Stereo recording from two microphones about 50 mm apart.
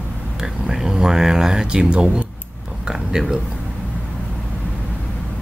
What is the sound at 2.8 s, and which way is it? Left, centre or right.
Speech, centre.